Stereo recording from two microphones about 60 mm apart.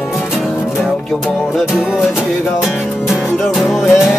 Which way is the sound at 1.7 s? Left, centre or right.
Centre.